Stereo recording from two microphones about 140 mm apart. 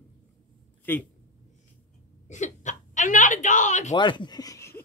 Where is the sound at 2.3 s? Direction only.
60° left (ahead or behind).